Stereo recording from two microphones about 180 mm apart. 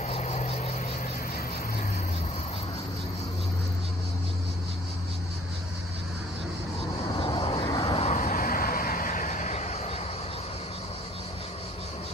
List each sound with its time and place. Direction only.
0.0 s cricket: 40° left (ahead or behind)
7.2 s vehicle: 30° left (ahead or behind)